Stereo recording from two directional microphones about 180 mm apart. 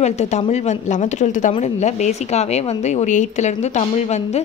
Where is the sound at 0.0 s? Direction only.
40° left (ahead or behind).